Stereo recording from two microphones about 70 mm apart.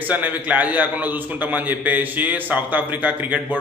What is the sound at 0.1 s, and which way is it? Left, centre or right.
A man's voice, right.